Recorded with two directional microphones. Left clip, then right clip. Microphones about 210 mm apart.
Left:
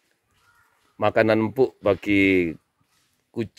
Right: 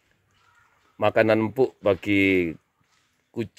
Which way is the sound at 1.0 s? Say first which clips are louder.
Even; 5° left (ahead or behind).